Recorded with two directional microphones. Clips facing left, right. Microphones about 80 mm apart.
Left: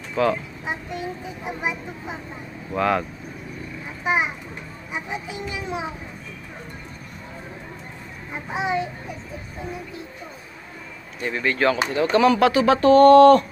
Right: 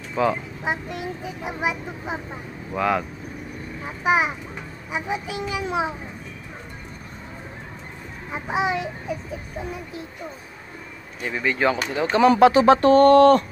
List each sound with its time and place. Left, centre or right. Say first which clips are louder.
0.1 s speech: left 1 dB; centre
0.7 s a child's voice: right 2 dB; right
2.7 s speech: left 1 dB; centre
4.0 s a child's voice: right 2 dB; right
4.9 s a child's voice: right 3 dB; right
8.5 s a child's voice: right 1 dB; right
11.1 s speech: left 1 dB; centre
12.3 s speech: right 7 dB; right